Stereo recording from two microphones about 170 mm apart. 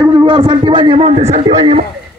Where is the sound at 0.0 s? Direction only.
25° right (ahead or behind).